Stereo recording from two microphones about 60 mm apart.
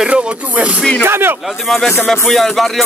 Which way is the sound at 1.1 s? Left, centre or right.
Right.